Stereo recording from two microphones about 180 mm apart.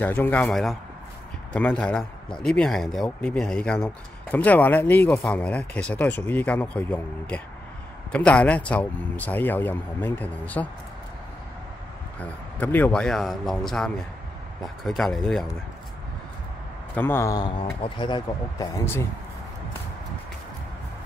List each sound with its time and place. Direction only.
0.0 s speech: 10° left (ahead or behind)
12.2 s speech: 10° left (ahead or behind)
16.9 s speech: 10° left (ahead or behind)
17.6 s speech: 30° left (ahead or behind)